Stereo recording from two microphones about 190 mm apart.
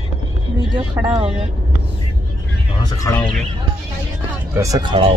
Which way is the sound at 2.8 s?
15° left (ahead or behind).